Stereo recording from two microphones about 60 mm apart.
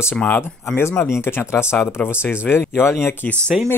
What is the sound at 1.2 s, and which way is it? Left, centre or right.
Speech, left.